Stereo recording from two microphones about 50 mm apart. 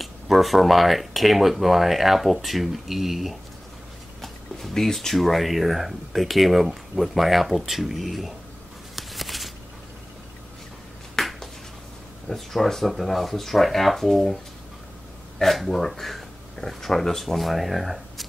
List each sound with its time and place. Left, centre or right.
0.0 s speech: centre
4.2 s speech: centre
8.9 s a sound: centre
11.1 s finger snapping: centre
12.3 s speech: centre